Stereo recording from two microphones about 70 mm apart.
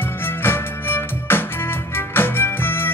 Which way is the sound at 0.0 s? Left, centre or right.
Left.